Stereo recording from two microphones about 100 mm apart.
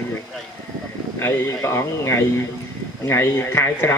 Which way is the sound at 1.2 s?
25° left (ahead or behind).